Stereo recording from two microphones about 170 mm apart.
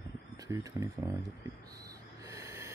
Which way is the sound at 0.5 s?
20° right (ahead or behind).